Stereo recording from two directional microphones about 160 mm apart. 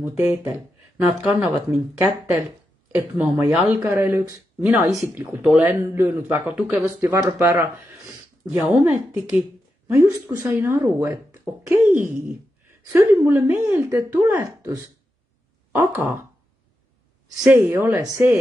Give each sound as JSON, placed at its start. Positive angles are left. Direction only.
{"t": 0.0, "sound": "speech", "side_deg": -15}
{"t": 3.8, "sound": "speech", "side_deg": -15}
{"t": 8.8, "sound": "speech", "side_deg": -10}
{"t": 17.4, "sound": "speech", "side_deg": -15}